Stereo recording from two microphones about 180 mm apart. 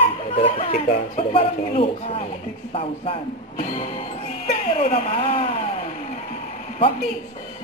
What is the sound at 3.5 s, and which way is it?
Music, 45° left (ahead or behind).